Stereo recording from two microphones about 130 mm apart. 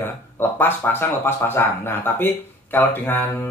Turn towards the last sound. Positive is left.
turn(degrees=15)  # may be behind; listen again after turning